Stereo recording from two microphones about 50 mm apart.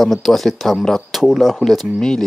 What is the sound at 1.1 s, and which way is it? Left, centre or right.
Speech, centre.